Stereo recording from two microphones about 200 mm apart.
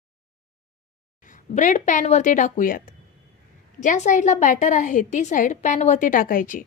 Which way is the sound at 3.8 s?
40° left (ahead or behind).